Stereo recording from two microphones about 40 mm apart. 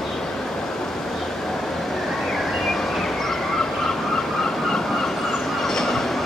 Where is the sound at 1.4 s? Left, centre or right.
Centre.